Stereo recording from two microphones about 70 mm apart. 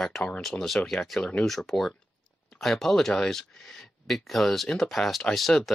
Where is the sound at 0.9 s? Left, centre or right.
Centre.